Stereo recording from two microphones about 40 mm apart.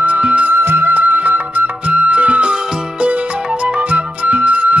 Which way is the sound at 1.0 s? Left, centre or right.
Right.